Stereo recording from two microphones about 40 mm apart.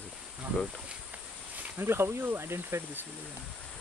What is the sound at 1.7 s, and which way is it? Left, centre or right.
Speech, right.